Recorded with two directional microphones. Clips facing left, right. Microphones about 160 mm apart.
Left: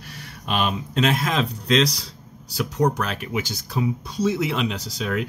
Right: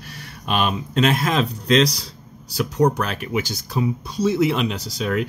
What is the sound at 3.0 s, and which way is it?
Speech, 50° right (ahead or behind).